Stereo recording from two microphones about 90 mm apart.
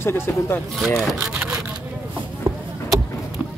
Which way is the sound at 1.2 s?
10° right (ahead or behind).